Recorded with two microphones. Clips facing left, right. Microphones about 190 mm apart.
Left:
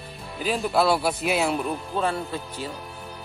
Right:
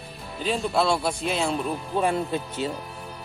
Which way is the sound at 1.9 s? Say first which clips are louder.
Right 4 dB; 20° right (ahead or behind).